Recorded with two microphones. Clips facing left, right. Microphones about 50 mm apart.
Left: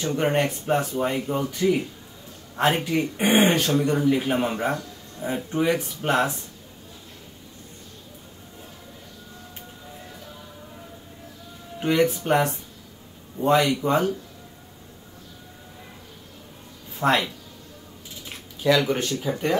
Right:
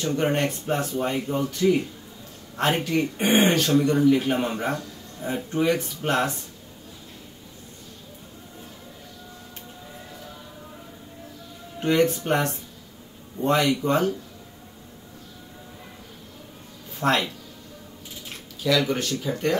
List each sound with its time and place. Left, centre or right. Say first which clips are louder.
0.0 s speech: left 1 dB; centre
2.9 s speech: even; centre
3.5 s speech: right 2 dB; centre
11.8 s speech: even; centre
17.0 s speech: left 1 dB; centre
18.6 s speech: left 2 dB; left